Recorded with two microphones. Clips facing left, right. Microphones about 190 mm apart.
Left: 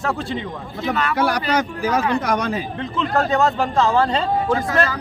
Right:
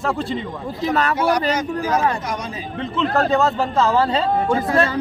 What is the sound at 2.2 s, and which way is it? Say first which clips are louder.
Speech: left 6 dB; 65° left (ahead or behind).